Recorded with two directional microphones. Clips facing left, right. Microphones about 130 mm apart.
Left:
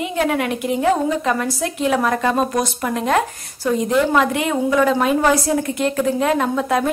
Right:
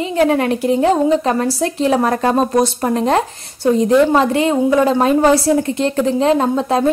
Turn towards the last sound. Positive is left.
turn(degrees=-30)  # may be behind; listen again after turning